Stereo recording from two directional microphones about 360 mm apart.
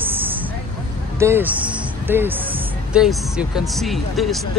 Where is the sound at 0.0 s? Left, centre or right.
Centre.